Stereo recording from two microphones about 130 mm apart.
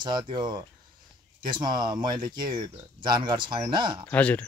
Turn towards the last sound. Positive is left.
turn(degrees=10)  # may be behind; listen again after turning